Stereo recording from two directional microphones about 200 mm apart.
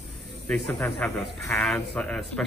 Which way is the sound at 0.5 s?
10° left (ahead or behind).